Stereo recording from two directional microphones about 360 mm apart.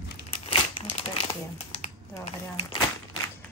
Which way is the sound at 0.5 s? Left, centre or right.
Centre.